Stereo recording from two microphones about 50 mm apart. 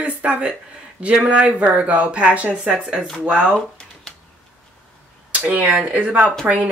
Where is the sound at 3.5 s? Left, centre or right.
Centre.